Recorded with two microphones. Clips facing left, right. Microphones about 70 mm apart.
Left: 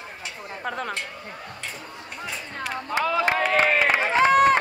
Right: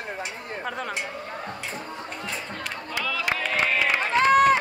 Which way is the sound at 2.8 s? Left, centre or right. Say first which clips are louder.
Left 5 dB; left.